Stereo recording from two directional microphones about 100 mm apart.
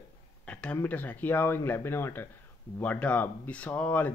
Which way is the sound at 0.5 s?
10° left (ahead or behind).